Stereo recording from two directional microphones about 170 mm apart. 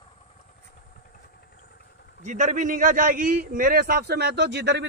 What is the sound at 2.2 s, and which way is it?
A man's voice, 45° right (ahead or behind).